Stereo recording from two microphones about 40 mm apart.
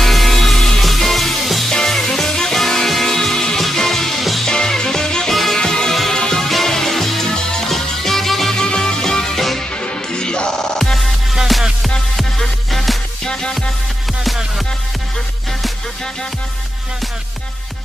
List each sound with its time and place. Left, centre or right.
0.0 s music: centre
4.5 s music: centre
5.3 s music: centre
5.6 s music: centre
8.5 s music: centre
9.7 s music: left
11.3 s music: centre